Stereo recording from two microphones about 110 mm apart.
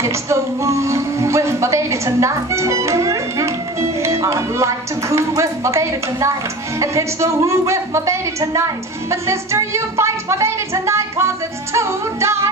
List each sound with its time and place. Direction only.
0.0 s speech: 25° right (ahead or behind)